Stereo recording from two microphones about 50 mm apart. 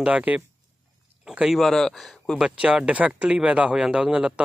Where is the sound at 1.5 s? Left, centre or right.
Centre.